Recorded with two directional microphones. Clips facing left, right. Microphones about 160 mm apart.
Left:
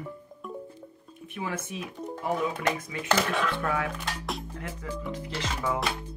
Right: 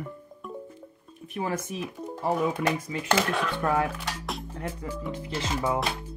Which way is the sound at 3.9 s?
Centre (ahead or behind).